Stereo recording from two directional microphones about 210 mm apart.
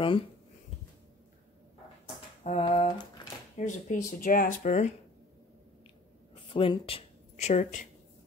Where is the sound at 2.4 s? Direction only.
30° left (ahead or behind).